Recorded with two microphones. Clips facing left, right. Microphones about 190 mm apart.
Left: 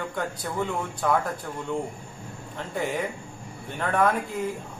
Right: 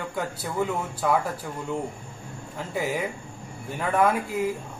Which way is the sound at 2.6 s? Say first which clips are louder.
Right 1 dB; 5° right (ahead or behind).